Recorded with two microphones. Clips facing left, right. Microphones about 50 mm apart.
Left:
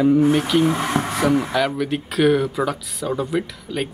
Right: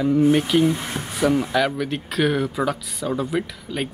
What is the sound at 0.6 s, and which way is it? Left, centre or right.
Speech, left.